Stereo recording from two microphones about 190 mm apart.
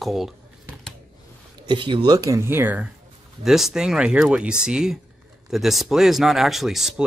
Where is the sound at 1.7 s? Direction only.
25° right (ahead or behind).